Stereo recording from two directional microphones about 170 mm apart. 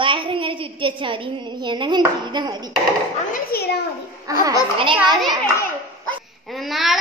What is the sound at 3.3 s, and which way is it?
Speech, 65° left (ahead or behind).